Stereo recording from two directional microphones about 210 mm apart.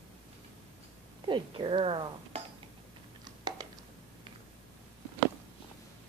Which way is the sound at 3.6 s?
20° right (ahead or behind).